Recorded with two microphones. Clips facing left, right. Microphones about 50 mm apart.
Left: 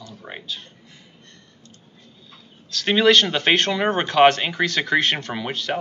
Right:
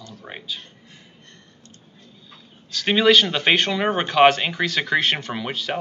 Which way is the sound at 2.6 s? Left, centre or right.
Centre.